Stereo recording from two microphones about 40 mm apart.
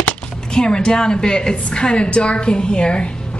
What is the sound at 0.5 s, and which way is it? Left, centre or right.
A woman's voice, centre.